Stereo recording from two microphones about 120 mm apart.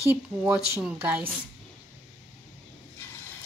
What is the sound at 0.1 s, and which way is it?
A woman's voice, 15° right (ahead or behind).